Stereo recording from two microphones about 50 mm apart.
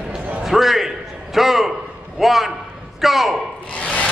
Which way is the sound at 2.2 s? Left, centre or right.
Centre.